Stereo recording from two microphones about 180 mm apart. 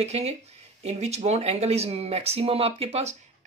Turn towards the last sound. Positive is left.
turn(degrees=-35)  # may be behind; listen again after turning